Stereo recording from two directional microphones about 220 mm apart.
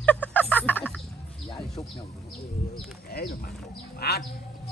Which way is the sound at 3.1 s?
45° left (ahead or behind).